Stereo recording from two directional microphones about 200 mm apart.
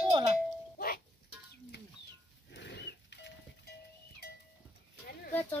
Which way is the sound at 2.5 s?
60° left (ahead or behind).